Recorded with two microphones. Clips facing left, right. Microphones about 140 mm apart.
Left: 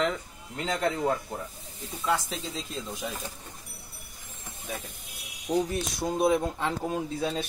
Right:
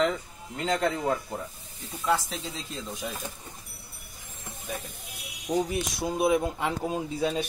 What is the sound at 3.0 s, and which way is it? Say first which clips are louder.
Speech: even; centre (ahead or behind).